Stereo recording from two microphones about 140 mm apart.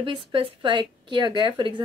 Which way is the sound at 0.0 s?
40° right (ahead or behind).